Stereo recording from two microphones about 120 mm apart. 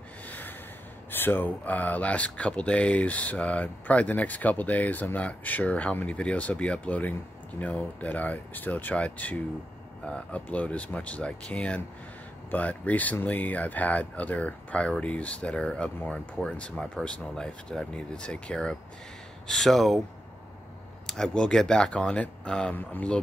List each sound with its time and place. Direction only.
0.3 s snort: 15° left (ahead or behind)
1.1 s speech: 15° left (ahead or behind); by 20.0 s centre (ahead or behind)
21.1 s speech: 5° left (ahead or behind)